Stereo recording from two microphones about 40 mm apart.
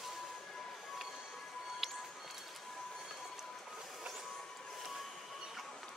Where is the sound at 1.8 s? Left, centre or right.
Centre.